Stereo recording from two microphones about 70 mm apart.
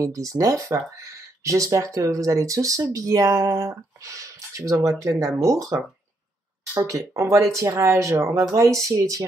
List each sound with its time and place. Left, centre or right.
0.0 s speech: right